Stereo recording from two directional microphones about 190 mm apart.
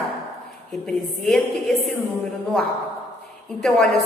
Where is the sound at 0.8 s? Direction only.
5° left (ahead or behind).